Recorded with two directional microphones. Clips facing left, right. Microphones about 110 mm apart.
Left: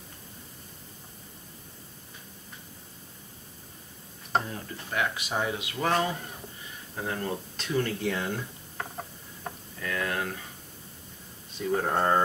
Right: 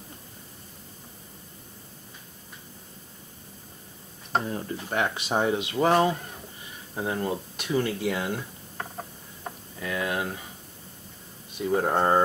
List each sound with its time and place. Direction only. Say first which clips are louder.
4.5 s speech: right 6 dB; 25° right (ahead or behind)
7.0 s a sound: right 4 dB; 15° right (ahead or behind)
9.8 s speech: right 2 dB; 15° right (ahead or behind)
11.5 s speech: right 3 dB; 10° right (ahead or behind)